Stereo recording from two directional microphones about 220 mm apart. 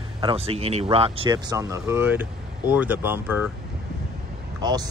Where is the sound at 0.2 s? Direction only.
25° right (ahead or behind).